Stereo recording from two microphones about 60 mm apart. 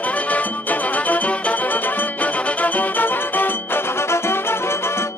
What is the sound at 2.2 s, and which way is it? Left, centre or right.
Music, left.